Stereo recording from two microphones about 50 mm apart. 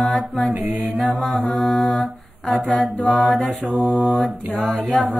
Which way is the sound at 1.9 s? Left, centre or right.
Centre.